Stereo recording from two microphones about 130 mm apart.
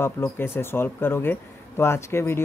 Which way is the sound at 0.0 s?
15° left (ahead or behind).